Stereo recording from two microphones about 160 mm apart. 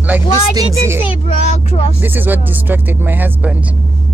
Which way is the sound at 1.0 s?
40° left (ahead or behind).